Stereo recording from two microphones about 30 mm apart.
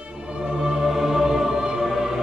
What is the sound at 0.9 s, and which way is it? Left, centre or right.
Music, centre.